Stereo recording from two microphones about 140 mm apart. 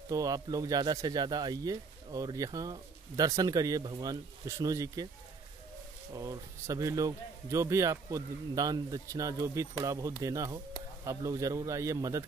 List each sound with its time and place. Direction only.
0.1 s speech: 25° right (ahead or behind)
6.1 s speech: 25° right (ahead or behind)